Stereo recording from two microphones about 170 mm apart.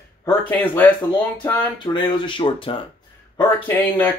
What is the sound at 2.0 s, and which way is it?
Speech, 30° left (ahead or behind).